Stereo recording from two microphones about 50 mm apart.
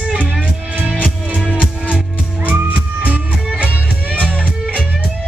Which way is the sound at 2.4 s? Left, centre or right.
Right.